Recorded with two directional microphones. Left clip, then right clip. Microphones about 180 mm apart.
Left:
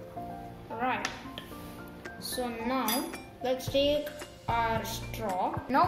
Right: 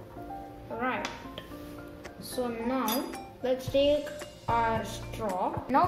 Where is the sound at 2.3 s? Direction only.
Centre (ahead or behind).